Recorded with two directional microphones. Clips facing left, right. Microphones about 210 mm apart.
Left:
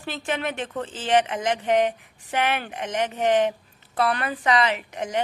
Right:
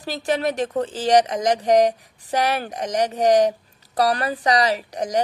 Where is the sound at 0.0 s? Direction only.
40° right (ahead or behind).